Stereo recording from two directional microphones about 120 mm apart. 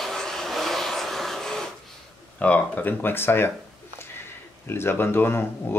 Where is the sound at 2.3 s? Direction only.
10° left (ahead or behind).